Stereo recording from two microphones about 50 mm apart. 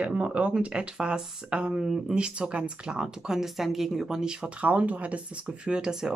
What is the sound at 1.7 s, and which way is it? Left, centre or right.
Speech, centre.